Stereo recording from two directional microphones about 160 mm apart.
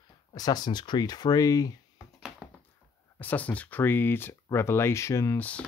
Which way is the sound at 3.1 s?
10° left (ahead or behind).